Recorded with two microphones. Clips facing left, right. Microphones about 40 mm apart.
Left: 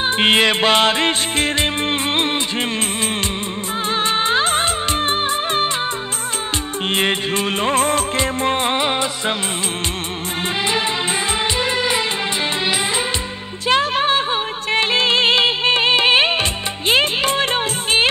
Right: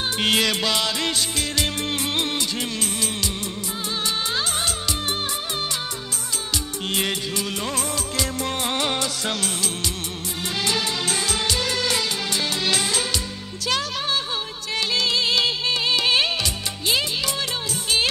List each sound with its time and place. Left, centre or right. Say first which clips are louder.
0.2 s music: left 6 dB; left
3.9 s music: left 8 dB; left
6.9 s music: left 7 dB; left
11.6 s music: left 5 dB; left
13.7 s music: left 9 dB; left